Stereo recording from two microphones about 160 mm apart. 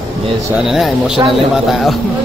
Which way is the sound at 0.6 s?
Centre (ahead or behind).